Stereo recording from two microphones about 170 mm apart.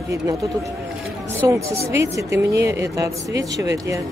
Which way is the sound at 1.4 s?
15° right (ahead or behind).